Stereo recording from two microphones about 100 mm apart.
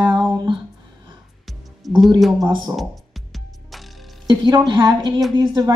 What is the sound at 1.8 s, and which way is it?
Speech, centre (ahead or behind).